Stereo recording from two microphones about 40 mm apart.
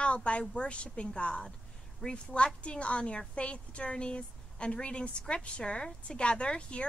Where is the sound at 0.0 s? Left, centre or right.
Left.